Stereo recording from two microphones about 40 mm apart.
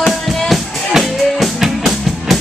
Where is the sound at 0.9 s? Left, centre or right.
Centre.